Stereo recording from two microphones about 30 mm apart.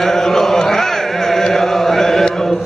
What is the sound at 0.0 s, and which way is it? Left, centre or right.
Chant, centre.